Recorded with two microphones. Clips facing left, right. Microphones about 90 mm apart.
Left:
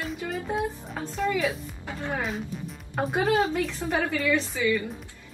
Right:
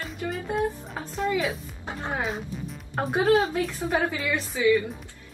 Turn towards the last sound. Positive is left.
turn(degrees=-5)  # may be behind; listen again after turning